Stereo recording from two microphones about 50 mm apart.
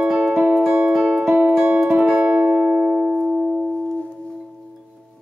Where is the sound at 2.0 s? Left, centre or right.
Right.